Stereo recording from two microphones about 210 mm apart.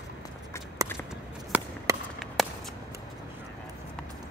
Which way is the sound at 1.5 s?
10° right (ahead or behind).